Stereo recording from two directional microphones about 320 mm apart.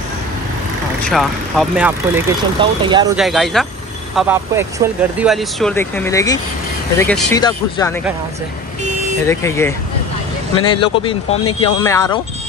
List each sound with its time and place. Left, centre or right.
1.0 s speech: centre
3.2 s speech: centre
9.2 s speech: centre